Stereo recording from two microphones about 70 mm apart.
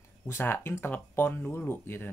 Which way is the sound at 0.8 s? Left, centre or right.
Left.